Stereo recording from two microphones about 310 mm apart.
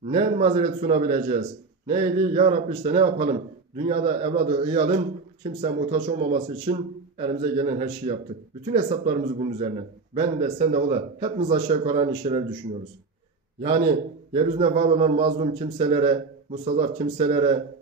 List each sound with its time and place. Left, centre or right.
0.0 s a man's voice: centre
13.6 s a man's voice: centre